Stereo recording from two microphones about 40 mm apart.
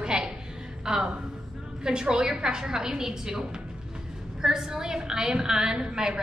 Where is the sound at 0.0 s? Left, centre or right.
Right.